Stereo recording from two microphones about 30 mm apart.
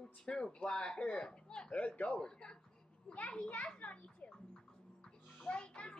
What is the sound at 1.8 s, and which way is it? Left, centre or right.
Speech, left.